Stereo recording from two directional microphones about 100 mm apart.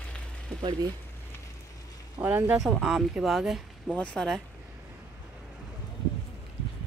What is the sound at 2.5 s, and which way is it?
Speech, 5° right (ahead or behind).